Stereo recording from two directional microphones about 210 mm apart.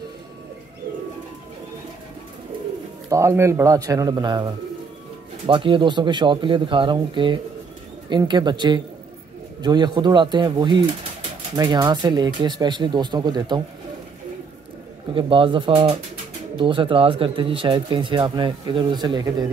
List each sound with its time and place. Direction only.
3.1 s speech: 15° right (ahead or behind)
5.5 s speech: 25° right (ahead or behind)
15.1 s speech: 25° right (ahead or behind)